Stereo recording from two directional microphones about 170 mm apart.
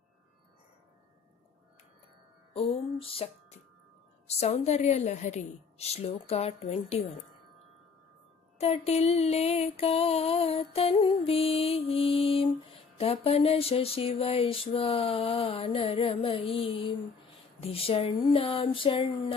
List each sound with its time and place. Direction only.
2.5 s music: 35° left (ahead or behind)
8.5 s music: 40° left (ahead or behind)